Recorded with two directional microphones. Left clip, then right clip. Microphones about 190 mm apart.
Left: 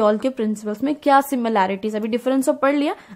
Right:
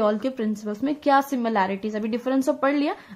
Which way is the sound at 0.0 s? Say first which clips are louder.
Left 5 dB; 35° left (ahead or behind).